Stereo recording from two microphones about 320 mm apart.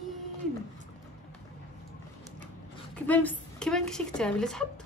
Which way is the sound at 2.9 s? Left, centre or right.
Centre.